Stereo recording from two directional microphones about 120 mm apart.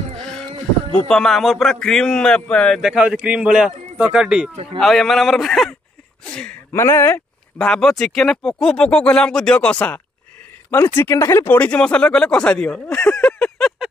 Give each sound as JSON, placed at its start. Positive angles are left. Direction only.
{"t": 0.2, "sound": "a sound", "side_deg": 5}
{"t": 0.9, "sound": "a man's voice", "side_deg": 5}
{"t": 6.2, "sound": "a sound", "side_deg": 10}
{"t": 6.7, "sound": "speech", "side_deg": 20}
{"t": 7.5, "sound": "speech", "side_deg": 5}
{"t": 10.7, "sound": "speech", "side_deg": 20}
{"t": 11.5, "sound": "speech", "side_deg": 10}